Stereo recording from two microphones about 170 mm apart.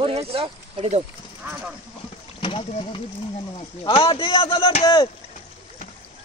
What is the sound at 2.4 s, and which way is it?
A man's voice, 30° left (ahead or behind).